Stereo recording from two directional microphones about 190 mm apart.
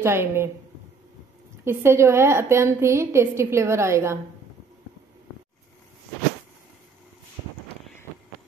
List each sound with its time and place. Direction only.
0.0 s a woman's voice: 15° right (ahead or behind)
1.6 s a woman's voice: 15° right (ahead or behind)